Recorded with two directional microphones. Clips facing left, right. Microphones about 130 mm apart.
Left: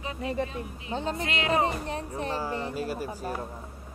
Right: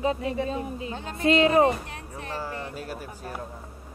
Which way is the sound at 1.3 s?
30° right (ahead or behind).